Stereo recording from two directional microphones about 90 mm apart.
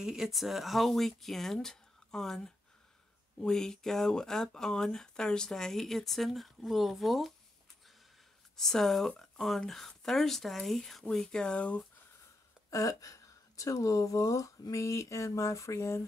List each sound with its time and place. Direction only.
0.0 s speech: 5° right (ahead or behind)
8.5 s speech: 5° left (ahead or behind)
12.6 s speech: 40° left (ahead or behind)